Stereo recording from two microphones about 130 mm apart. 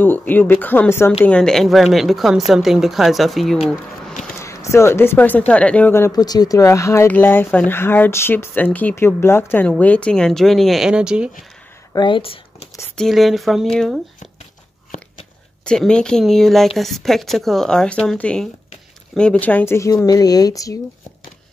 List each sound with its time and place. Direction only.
0.0 s speech: 15° left (ahead or behind)
1.2 s a woman's voice: 5° left (ahead or behind)
4.4 s speech: 20° left (ahead or behind)
6.1 s speech: 30° left (ahead or behind); by 11.2 s 5° right (ahead or behind)
11.9 s speech: 35° left (ahead or behind)
12.9 s a woman's voice: centre (ahead or behind)
15.6 s a woman's voice: 5° left (ahead or behind); by 20.7 s 30° left (ahead or behind)